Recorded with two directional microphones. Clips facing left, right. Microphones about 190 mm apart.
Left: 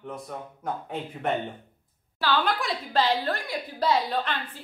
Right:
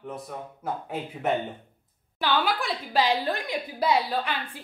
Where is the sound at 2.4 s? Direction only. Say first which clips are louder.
Even; 5° right (ahead or behind).